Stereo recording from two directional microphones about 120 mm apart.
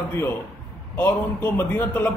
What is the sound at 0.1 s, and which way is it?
A man's voice, 20° left (ahead or behind).